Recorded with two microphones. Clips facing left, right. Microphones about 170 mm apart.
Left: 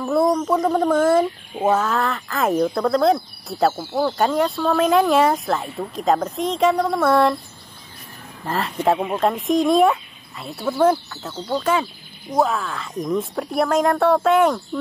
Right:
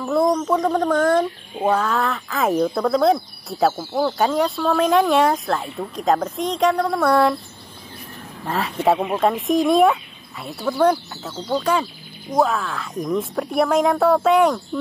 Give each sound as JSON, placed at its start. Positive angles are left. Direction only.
{"t": 0.0, "sound": "speech", "side_deg": 5}
{"t": 8.5, "sound": "speech", "side_deg": 0}